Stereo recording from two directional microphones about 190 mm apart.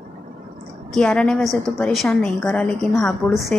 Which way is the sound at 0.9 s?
5° left (ahead or behind).